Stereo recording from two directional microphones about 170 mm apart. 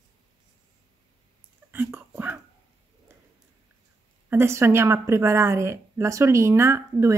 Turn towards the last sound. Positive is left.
turn(degrees=-15)  # may be behind; listen again after turning